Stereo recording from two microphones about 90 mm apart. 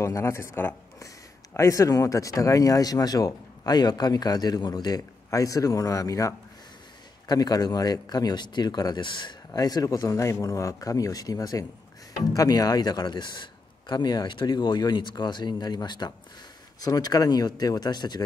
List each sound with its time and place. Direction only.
0.0 s speech: 30° left (ahead or behind)
1.6 s a man's voice: 40° left (ahead or behind); by 9.4 s 60° left (ahead or behind)
9.5 s a man's voice: 45° left (ahead or behind)